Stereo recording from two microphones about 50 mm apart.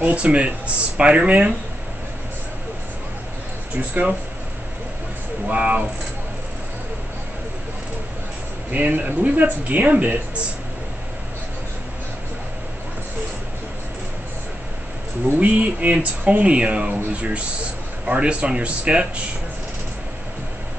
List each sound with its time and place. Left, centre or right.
0.0 s speech: right
3.7 s speech: right
5.5 s speech: right
8.7 s speech: right
15.3 s speech: right